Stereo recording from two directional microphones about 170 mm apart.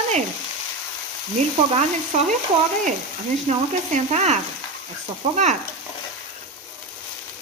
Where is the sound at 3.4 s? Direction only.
40° right (ahead or behind).